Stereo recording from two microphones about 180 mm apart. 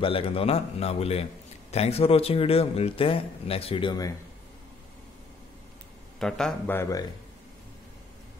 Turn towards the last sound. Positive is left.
turn(degrees=15)  # may be behind; listen again after turning